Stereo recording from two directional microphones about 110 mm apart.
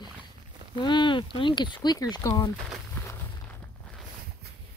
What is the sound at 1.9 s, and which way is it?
Speech, 30° left (ahead or behind).